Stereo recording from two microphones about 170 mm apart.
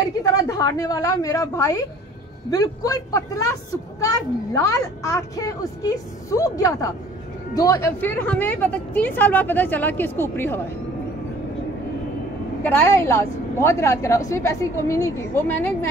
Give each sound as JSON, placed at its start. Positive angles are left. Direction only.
{"t": 0.2, "sound": "a woman's voice", "side_deg": 20}
{"t": 12.6, "sound": "a woman's voice", "side_deg": 15}